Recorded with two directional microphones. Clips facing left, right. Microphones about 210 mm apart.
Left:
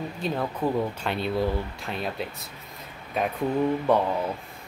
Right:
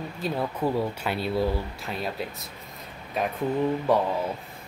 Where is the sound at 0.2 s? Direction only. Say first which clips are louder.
Even; 5° right (ahead or behind).